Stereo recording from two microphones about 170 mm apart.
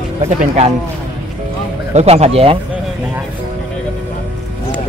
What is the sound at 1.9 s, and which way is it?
Speech, 40° right (ahead or behind).